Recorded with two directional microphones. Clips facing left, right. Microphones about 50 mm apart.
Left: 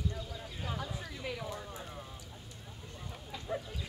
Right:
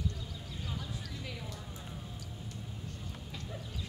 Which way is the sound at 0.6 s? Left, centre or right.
Left.